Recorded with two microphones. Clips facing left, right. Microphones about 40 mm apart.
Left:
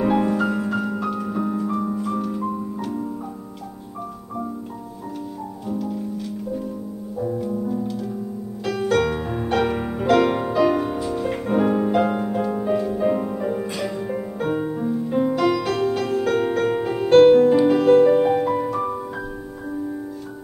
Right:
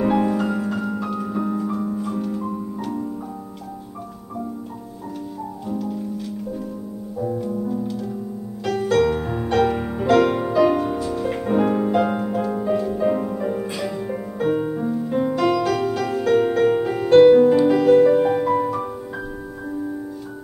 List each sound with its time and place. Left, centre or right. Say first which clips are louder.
0.0 s piano: even; centre
1.8 s music: left 1 dB; centre
5.7 s music: even; centre